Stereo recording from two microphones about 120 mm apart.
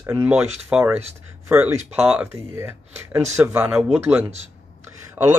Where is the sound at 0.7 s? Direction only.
10° right (ahead or behind).